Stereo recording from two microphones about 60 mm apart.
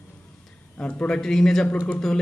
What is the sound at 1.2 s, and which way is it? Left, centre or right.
Speech, centre.